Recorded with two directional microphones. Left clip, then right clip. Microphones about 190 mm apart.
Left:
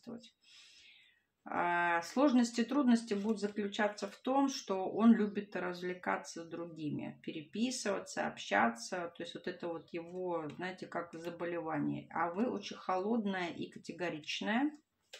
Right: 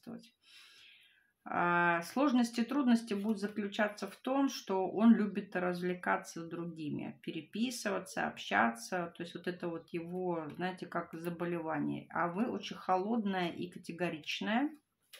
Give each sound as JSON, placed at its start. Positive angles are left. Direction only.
{"t": 1.5, "sound": "speech", "side_deg": -35}